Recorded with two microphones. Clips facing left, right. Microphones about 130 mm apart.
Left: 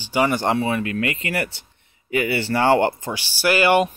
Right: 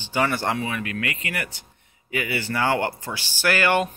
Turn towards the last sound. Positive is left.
turn(degrees=15)  # may be behind; listen again after turning